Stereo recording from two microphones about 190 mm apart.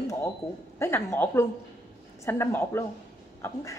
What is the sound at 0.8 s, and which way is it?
Speech, 10° left (ahead or behind).